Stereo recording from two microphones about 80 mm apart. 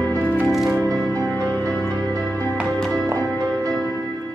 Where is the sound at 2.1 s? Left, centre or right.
Left.